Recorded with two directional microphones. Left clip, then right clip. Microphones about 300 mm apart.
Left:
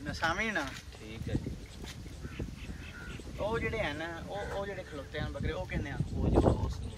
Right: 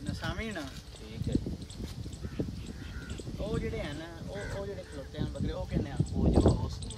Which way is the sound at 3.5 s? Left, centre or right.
Centre.